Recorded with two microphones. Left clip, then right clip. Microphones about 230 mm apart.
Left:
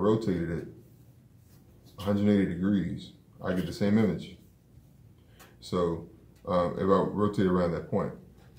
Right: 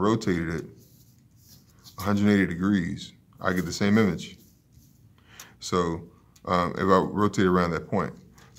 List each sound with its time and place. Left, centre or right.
0.0 s speech: right
2.0 s speech: right
5.6 s speech: right